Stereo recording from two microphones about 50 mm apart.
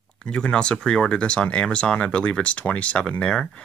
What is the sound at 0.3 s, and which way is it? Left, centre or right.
Speech, centre.